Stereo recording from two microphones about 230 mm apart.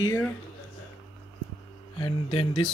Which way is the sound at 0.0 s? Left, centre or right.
Centre.